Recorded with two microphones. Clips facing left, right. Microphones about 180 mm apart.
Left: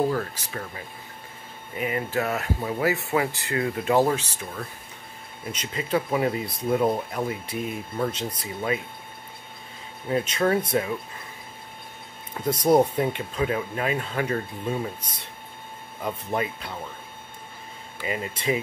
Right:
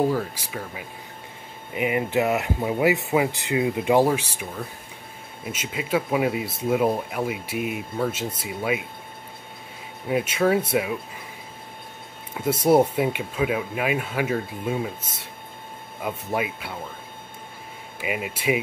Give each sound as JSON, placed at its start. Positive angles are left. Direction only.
{"t": 0.1, "sound": "speech", "side_deg": -10}
{"t": 10.0, "sound": "speech", "side_deg": -10}
{"t": 12.4, "sound": "speech", "side_deg": -5}
{"t": 18.0, "sound": "speech", "side_deg": -10}